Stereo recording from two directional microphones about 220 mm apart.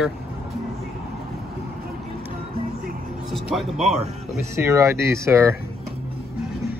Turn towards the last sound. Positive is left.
turn(degrees=-10)  # may be behind; listen again after turning